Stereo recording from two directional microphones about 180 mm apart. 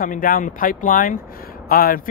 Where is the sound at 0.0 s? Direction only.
50° left (ahead or behind).